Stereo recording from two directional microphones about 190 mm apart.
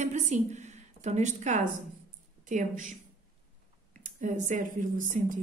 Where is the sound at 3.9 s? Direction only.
45° right (ahead or behind).